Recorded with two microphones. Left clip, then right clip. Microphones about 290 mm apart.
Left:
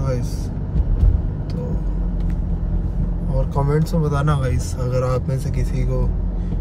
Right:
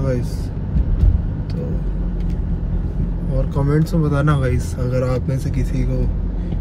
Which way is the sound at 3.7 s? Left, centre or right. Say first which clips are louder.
Right 3 dB; centre.